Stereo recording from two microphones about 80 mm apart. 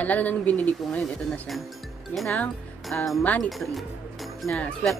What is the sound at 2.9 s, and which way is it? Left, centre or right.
Speech, centre.